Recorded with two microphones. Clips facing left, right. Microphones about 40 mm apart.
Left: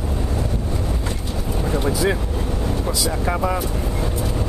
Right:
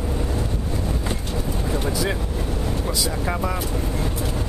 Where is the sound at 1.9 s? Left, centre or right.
Centre.